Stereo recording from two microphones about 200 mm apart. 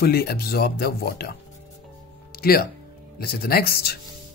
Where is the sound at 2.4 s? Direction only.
50° left (ahead or behind).